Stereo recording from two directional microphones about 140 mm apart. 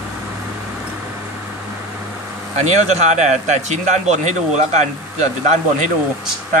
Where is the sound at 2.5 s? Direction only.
55° right (ahead or behind).